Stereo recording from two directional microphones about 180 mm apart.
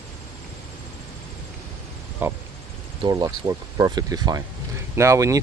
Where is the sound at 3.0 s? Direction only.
20° right (ahead or behind).